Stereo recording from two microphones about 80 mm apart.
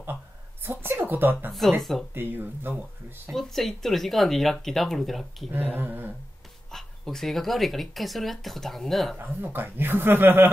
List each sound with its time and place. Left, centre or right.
0.0 s a sound: right
1.5 s speech: centre
2.1 s speech: right
3.3 s speech: centre
5.8 s speech: right
6.7 s speech: centre
9.2 s speech: right